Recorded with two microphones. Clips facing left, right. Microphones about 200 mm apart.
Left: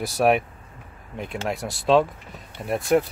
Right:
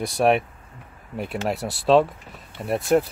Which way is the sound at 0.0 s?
Centre (ahead or behind).